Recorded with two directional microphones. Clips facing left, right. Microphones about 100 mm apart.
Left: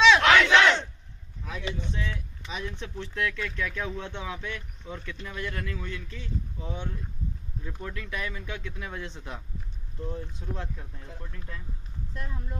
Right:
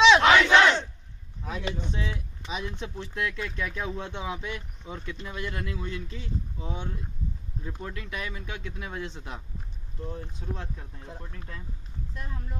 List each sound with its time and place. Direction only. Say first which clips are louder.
0.0 s crowd: right 1 dB; 20° right (ahead or behind)
1.4 s a sound: right 2 dB; 35° right (ahead or behind)
1.9 s speech: right 1 dB; 20° right (ahead or behind)
10.6 s speech: left 1 dB; 20° right (ahead or behind)